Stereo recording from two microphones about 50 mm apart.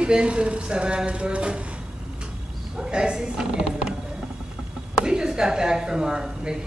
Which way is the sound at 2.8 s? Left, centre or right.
Centre.